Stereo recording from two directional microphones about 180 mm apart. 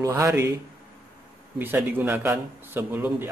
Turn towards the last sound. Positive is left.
turn(degrees=-10)  # may be behind; listen again after turning